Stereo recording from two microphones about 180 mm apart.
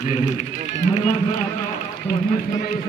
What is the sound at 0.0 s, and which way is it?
A man's voice, 40° left (ahead or behind).